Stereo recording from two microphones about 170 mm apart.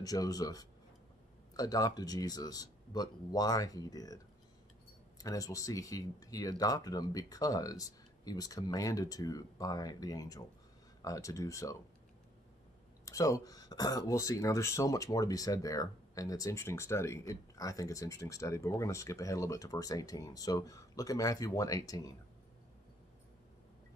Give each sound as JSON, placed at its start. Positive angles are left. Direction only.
{"t": 0.0, "sound": "speech", "side_deg": 20}
{"t": 5.2, "sound": "speech", "side_deg": 20}
{"t": 13.0, "sound": "speech", "side_deg": 20}